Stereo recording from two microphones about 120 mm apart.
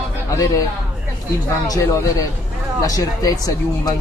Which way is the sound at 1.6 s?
30° left (ahead or behind).